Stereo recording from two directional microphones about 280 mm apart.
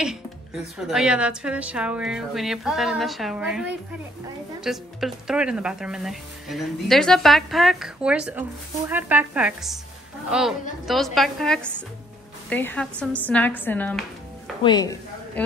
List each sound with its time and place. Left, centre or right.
0.7 s a woman's voice: centre